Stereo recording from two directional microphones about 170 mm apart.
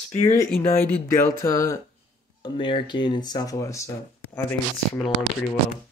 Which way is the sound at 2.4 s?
30° left (ahead or behind).